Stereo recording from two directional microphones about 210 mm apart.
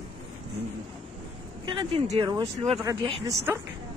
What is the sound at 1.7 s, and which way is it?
Speech, 25° right (ahead or behind).